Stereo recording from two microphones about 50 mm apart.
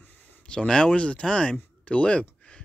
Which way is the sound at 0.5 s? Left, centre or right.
Centre.